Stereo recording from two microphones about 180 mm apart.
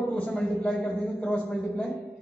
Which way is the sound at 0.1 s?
5° left (ahead or behind).